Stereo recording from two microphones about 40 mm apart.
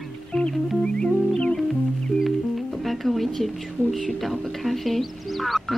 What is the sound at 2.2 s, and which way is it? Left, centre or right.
Music, centre.